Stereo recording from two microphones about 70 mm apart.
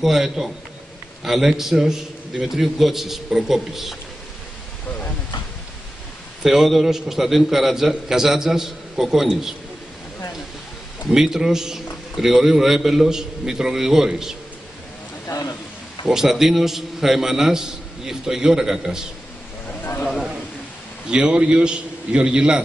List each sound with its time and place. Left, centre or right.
0.0 s a man's voice: centre
4.8 s a sound: left
6.4 s a man's voice: centre
11.1 s a man's voice: centre
16.1 s a man's voice: centre
19.8 s a sound: left
21.1 s a man's voice: centre